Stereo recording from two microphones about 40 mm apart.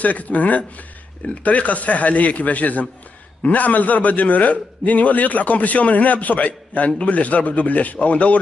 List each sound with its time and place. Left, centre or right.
0.0 s a man's voice: left